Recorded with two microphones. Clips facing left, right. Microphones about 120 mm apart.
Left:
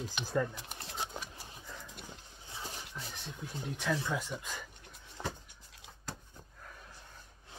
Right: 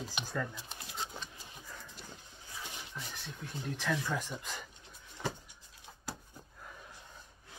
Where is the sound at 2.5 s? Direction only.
30° left (ahead or behind).